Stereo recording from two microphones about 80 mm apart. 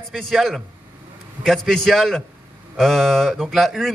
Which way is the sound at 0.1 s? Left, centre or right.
Centre.